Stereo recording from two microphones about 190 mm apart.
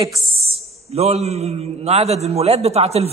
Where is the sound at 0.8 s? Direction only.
35° right (ahead or behind).